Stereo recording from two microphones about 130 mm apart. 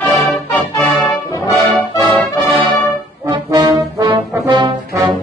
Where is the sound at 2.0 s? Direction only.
35° right (ahead or behind).